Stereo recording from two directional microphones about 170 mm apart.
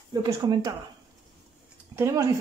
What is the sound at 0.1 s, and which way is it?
Speech, 25° right (ahead or behind).